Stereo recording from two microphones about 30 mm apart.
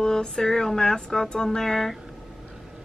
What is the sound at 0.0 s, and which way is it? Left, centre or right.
Speech, left.